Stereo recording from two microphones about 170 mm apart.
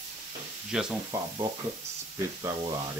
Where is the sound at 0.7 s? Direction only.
5° right (ahead or behind).